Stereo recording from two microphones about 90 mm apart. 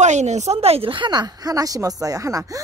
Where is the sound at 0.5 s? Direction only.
90° right.